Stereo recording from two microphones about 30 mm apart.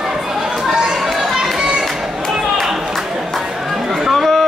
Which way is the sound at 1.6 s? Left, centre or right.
Right.